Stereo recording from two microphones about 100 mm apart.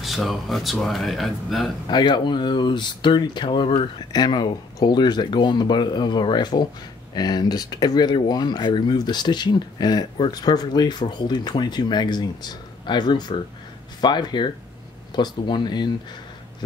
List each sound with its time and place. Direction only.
0.0 s speech: centre (ahead or behind)
1.9 s speech: 50° left (ahead or behind)
4.1 s speech: 45° left (ahead or behind)